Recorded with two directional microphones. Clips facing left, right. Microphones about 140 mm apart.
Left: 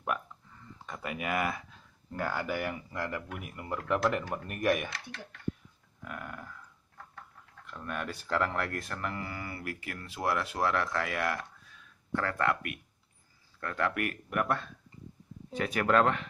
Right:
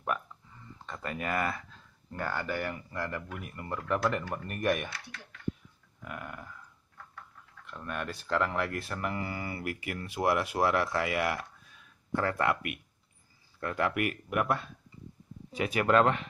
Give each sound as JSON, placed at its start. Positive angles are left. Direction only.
{"t": 0.0, "sound": "speech", "side_deg": 5}
{"t": 6.0, "sound": "speech", "side_deg": -5}
{"t": 7.6, "sound": "speech", "side_deg": 0}